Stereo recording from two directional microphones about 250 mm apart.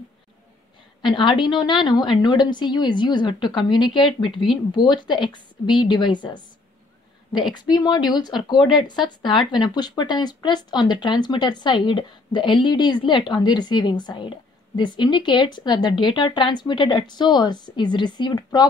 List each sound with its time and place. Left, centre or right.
1.0 s a woman's voice: centre
7.5 s a woman's voice: centre